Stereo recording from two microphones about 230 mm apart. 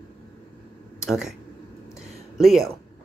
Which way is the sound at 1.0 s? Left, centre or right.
Centre.